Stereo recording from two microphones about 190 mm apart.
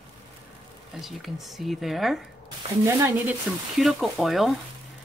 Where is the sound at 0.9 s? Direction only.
Centre (ahead or behind).